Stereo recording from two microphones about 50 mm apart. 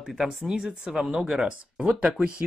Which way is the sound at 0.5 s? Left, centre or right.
Centre.